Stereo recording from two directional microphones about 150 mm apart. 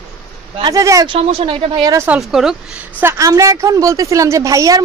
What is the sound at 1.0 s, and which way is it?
Speech, 40° right (ahead or behind).